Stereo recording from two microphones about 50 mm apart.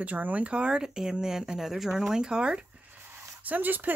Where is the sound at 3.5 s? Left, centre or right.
Right.